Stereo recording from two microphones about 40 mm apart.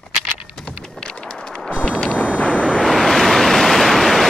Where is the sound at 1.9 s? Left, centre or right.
Left.